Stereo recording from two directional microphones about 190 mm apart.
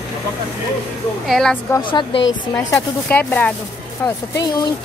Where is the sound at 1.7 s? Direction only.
25° left (ahead or behind).